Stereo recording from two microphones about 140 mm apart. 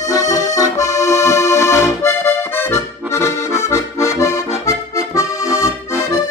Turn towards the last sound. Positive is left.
turn(degrees=25)  # may be behind; listen again after turning